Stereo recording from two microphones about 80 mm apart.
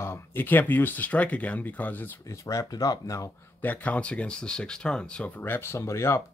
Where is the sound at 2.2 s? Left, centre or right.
Left.